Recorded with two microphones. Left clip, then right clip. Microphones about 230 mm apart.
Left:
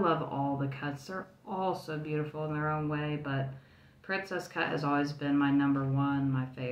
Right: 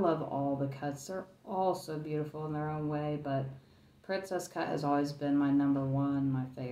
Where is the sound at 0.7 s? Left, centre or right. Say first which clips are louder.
Even; left.